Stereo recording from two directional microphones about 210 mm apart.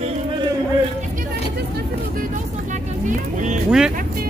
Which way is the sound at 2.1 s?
40° right (ahead or behind).